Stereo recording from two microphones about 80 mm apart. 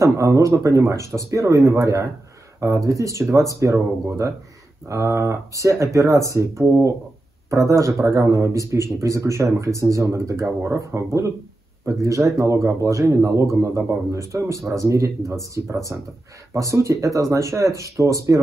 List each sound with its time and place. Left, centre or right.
0.0 s speech: right
15.9 s speech: centre
16.5 s speech: right